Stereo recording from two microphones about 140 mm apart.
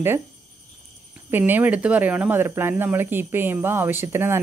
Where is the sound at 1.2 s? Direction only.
15° right (ahead or behind).